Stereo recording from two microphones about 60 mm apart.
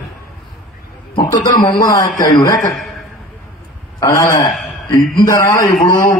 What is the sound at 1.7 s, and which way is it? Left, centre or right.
Speech, left.